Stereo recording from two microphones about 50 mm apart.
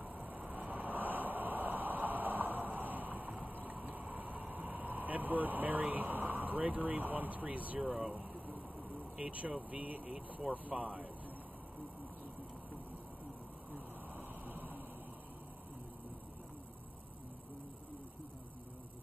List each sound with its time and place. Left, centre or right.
0.0 s vehicle: right
7.8 s speech: centre
9.2 s speech: right
13.7 s vehicle: right